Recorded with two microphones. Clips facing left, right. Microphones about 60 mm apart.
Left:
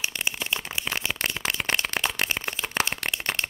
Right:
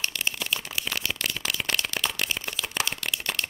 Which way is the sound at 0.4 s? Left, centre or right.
Left.